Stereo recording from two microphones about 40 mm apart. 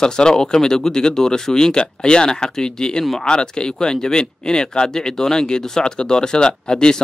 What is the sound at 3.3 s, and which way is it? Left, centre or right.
Speech, left.